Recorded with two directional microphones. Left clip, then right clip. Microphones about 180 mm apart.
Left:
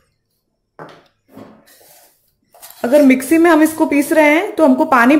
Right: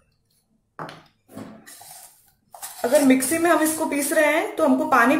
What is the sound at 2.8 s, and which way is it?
A woman's voice, 40° left (ahead or behind).